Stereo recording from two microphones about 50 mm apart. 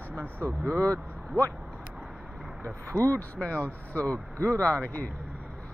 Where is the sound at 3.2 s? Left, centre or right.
Left.